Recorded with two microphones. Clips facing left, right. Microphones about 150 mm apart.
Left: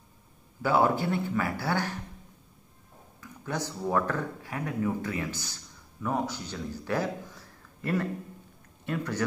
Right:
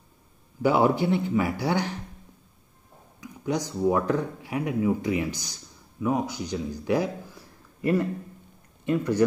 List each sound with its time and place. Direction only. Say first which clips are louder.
0.6 s speech: right 3 dB; 15° right (ahead or behind)
3.2 s speech: right 6 dB; 15° right (ahead or behind)